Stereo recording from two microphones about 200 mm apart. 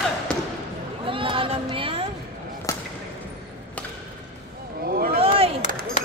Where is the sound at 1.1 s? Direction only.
25° right (ahead or behind).